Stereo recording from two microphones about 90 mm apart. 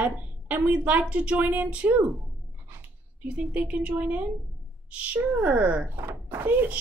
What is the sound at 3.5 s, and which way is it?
A woman's voice, 15° right (ahead or behind).